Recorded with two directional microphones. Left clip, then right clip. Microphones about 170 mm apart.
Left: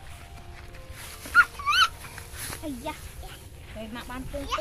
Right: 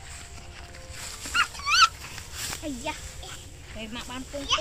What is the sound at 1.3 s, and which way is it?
Dog, 30° right (ahead or behind).